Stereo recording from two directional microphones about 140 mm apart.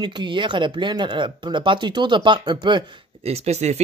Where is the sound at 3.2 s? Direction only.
50° right (ahead or behind).